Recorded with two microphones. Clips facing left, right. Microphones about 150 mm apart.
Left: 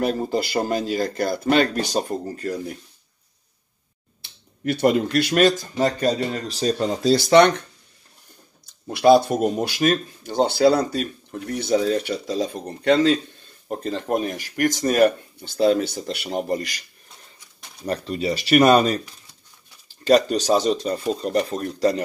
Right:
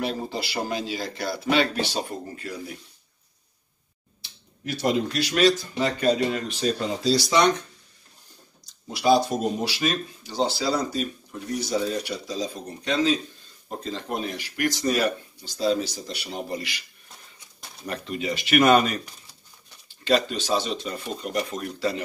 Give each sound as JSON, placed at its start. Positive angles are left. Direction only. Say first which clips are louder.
{"t": 0.0, "sound": "speech", "louder": "left 6 dB", "side_deg": 45}
{"t": 4.2, "sound": "speech", "louder": "left 8 dB", "side_deg": 55}
{"t": 7.0, "sound": "speech", "louder": "left 8 dB", "side_deg": 55}
{"t": 8.6, "sound": "a sound", "louder": "left 6 dB", "side_deg": 60}
{"t": 9.3, "sound": "speech", "louder": "left 4 dB", "side_deg": 50}
{"t": 17.8, "sound": "speech", "louder": "left 5 dB", "side_deg": 35}
{"t": 20.1, "sound": "speech", "louder": "left 6 dB", "side_deg": 40}